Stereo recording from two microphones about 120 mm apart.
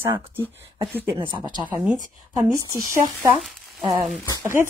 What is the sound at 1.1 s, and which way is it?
Speech, 45° right (ahead or behind).